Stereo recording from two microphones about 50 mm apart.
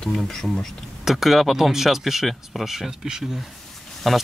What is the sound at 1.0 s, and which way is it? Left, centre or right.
Speech, centre.